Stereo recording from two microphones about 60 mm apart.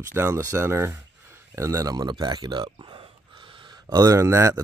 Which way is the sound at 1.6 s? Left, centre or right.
Right.